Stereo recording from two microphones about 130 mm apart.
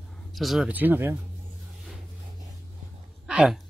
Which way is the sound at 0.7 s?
15° right (ahead or behind).